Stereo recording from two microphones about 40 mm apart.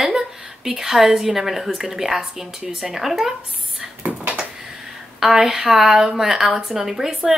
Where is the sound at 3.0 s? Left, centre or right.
Centre.